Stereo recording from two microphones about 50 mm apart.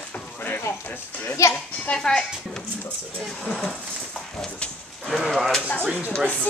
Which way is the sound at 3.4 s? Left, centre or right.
Centre.